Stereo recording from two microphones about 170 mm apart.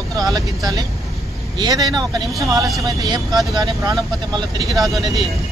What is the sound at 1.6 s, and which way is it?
Speech, 25° right (ahead or behind).